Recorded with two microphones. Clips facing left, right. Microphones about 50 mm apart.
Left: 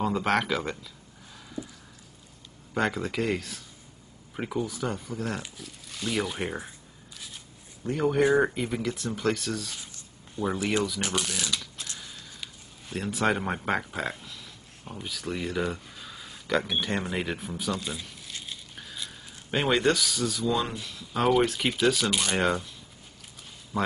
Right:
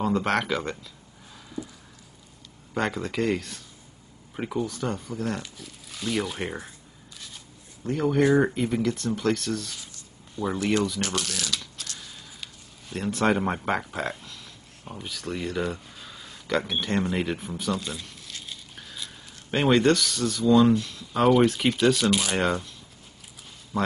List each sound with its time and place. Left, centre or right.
0.0 s speech: centre
2.7 s speech: centre
7.8 s speech: centre
11.8 s a sound: centre
12.9 s speech: centre
23.7 s speech: centre